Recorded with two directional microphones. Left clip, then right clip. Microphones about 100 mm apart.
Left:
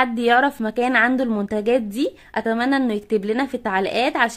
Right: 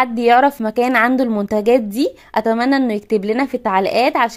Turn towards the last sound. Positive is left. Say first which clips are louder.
# right 5 dB
turn(degrees=-35)  # may be behind; listen again after turning